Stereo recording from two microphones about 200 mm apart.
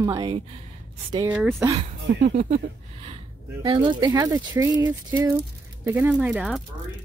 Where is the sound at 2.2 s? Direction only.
40° right (ahead or behind).